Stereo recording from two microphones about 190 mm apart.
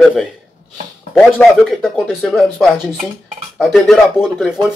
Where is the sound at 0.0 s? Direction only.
5° left (ahead or behind).